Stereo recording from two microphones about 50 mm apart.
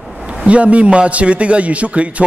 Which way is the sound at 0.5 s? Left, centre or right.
Right.